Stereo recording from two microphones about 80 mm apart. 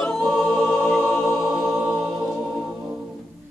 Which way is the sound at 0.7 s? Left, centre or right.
Left.